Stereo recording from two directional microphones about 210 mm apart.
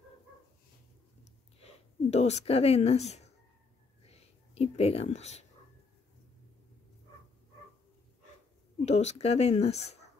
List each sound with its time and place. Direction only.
1.6 s speech: 30° left (ahead or behind)
4.0 s a sound: 30° left (ahead or behind)
8.8 s speech: 30° left (ahead or behind)